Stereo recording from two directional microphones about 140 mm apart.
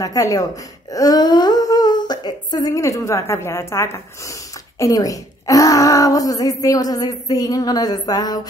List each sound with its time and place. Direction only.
0.0 s speech: 25° left (ahead or behind)